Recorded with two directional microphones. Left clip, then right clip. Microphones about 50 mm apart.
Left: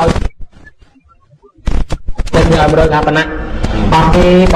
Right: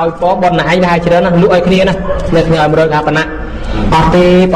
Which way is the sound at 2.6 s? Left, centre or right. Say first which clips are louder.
Even; right.